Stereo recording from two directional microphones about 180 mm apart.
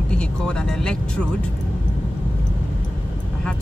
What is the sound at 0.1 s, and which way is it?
Speech, 5° left (ahead or behind).